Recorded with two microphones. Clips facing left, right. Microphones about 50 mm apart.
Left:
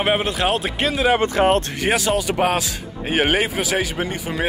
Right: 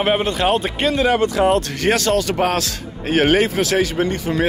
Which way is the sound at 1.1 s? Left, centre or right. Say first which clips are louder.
Right 1 dB; left.